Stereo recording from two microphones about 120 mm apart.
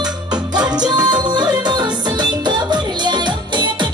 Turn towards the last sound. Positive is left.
turn(degrees=-40)  # may be behind; listen again after turning